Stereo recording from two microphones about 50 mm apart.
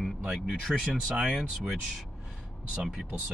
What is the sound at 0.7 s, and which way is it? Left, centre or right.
Speech, centre.